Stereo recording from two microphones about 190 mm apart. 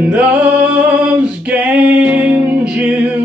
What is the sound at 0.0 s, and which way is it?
Male singing, 5° right (ahead or behind).